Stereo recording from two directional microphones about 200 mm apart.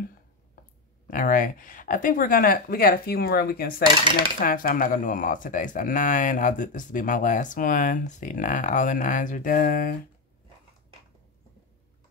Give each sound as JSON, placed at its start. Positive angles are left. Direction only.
{"t": 1.0, "sound": "speech", "side_deg": 45}